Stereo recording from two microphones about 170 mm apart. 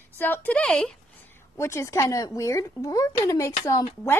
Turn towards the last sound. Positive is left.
turn(degrees=20)  # may be behind; listen again after turning